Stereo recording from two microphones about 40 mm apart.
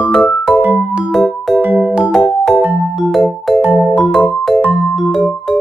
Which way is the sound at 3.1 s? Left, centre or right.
Centre.